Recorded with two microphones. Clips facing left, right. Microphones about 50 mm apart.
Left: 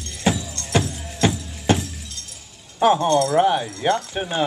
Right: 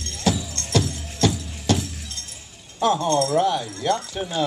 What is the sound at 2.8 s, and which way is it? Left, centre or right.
Speech, left.